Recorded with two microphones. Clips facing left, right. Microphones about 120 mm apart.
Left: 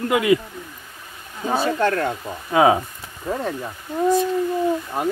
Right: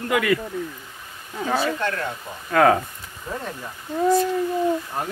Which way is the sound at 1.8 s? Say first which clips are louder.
Left 6 dB; 40° left (ahead or behind).